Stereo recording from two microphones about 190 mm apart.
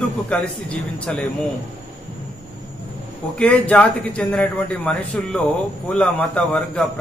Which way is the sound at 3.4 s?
5° left (ahead or behind).